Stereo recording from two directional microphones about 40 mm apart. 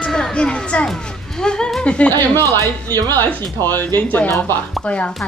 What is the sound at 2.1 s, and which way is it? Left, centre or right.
Speech, left.